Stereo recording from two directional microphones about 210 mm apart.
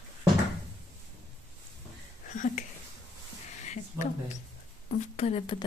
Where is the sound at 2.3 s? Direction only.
40° left (ahead or behind).